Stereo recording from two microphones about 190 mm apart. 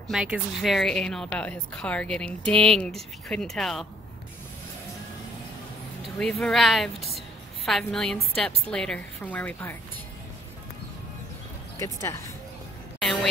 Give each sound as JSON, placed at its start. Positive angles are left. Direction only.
{"t": 0.1, "sound": "speech", "side_deg": -5}
{"t": 6.1, "sound": "a woman's voice", "side_deg": 5}
{"t": 11.8, "sound": "a woman's voice", "side_deg": 15}
{"t": 13.0, "sound": "a sound", "side_deg": 5}